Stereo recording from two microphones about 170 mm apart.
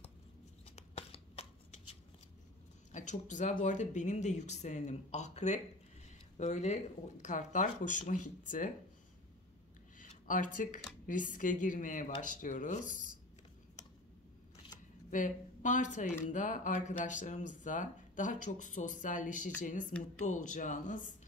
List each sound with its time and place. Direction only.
0.7 s shuffling cards: 35° left (ahead or behind)
2.9 s a woman's voice: 45° left (ahead or behind)
9.9 s a sound: 50° left (ahead or behind)
11.1 s speech: 50° left (ahead or behind)
15.0 s speech: 50° left (ahead or behind)